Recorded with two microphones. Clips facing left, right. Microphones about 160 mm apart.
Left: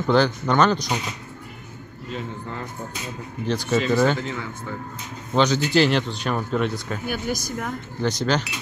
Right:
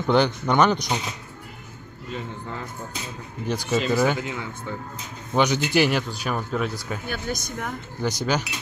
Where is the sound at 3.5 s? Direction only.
10° right (ahead or behind).